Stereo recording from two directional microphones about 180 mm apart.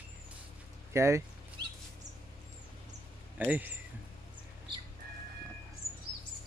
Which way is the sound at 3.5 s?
10° right (ahead or behind).